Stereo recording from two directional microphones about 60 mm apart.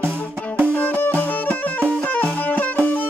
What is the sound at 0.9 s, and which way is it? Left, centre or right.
Music, left.